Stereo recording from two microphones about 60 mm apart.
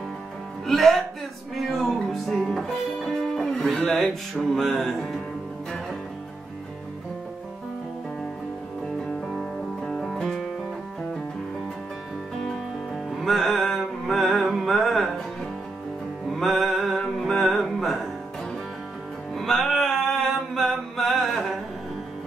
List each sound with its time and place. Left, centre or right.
0.7 s speech: centre
1.5 s music: centre
9.8 s music: centre
12.4 s music: centre
16.3 s music: centre
19.3 s music: centre